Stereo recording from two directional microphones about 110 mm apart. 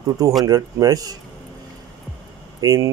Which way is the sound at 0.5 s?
35° right (ahead or behind).